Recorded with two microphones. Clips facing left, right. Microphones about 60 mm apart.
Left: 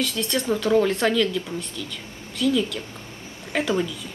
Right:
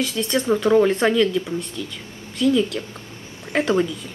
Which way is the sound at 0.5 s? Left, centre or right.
Centre.